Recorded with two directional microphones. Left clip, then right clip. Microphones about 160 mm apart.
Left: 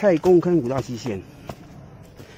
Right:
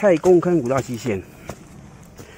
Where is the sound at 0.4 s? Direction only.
Centre (ahead or behind).